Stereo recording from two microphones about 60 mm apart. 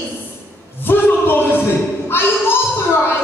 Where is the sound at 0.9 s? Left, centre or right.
Left.